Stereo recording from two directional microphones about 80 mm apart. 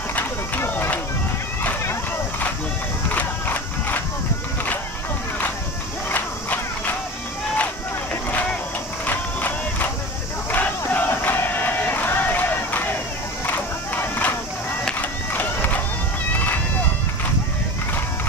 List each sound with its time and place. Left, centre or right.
0.1 s run: left
3.1 s run: left
6.0 s battle cry: left
8.3 s a sound: left
10.5 s crowd: left
13.5 s music: left
15.0 s run: left